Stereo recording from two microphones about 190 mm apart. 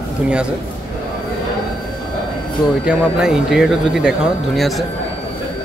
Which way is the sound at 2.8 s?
5° right (ahead or behind).